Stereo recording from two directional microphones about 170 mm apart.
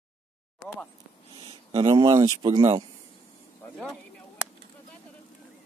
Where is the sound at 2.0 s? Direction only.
20° right (ahead or behind).